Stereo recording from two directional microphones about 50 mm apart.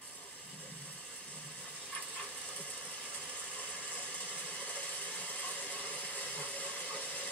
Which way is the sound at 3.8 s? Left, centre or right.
Left.